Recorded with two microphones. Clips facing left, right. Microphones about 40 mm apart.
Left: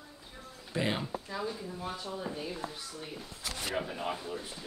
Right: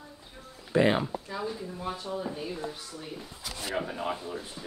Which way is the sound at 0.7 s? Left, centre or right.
Right.